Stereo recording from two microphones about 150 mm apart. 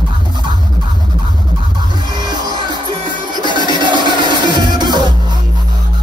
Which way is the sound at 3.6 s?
30° right (ahead or behind).